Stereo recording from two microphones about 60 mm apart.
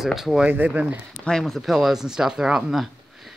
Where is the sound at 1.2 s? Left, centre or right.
Centre.